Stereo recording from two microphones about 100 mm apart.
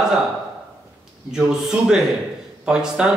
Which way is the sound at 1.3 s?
5° right (ahead or behind).